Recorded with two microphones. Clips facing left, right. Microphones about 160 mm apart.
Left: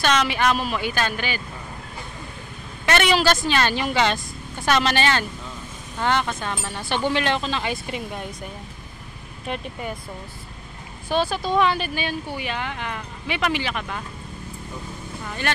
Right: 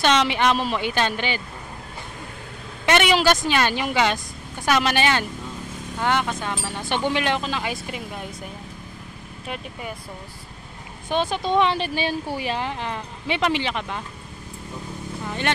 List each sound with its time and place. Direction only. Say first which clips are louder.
0.0 s speech: right 1 dB; 25° right (ahead or behind)
2.8 s speech: right 1 dB; 15° right (ahead or behind)
9.5 s speech: left 3 dB; 5° right (ahead or behind)
11.1 s speech: even; 20° right (ahead or behind)
15.2 s speech: right 2 dB; 20° right (ahead or behind)